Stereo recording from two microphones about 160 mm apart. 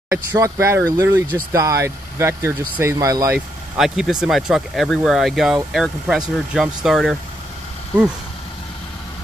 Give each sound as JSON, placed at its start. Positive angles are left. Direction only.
{"t": 0.1, "sound": "speech", "side_deg": -20}
{"t": 3.3, "sound": "speech", "side_deg": -5}